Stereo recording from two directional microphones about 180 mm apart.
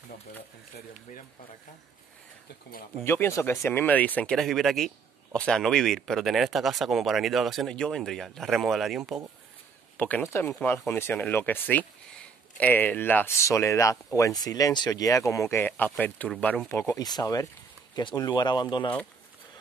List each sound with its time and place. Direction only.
0.7 s speech: 45° left (ahead or behind)
3.0 s speech: 15° left (ahead or behind)